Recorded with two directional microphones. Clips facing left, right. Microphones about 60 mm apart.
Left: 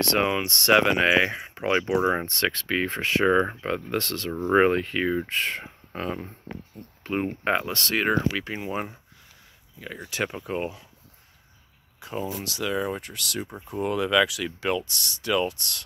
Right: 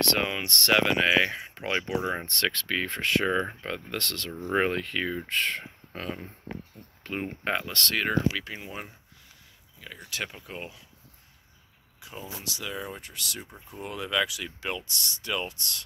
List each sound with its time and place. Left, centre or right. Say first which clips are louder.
0.0 s speech: left 4 dB; left
7.0 s a sound: left 6 dB; left
7.4 s speech: left 1 dB; left
9.9 s speech: left 6 dB; left
12.0 s speech: left 9 dB; left